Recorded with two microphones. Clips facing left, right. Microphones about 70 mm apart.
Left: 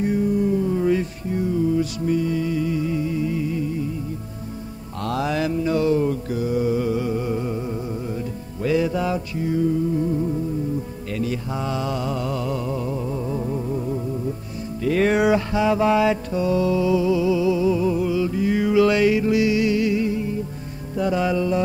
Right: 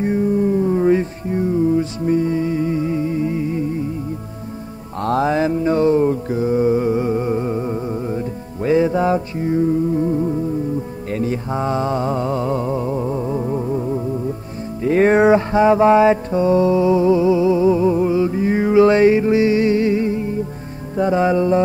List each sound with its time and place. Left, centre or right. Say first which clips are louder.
0.0 s a sound: right 3 dB; right
5.0 s mantra: right 6 dB; right
14.8 s music: right 5 dB; right